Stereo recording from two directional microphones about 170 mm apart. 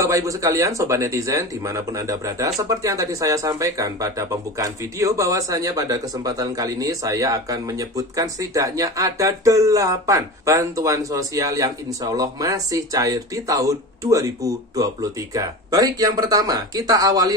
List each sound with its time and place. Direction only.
0.0 s speech: 20° right (ahead or behind)